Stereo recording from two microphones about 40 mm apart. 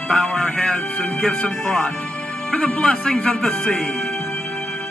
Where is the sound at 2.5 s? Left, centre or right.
Left.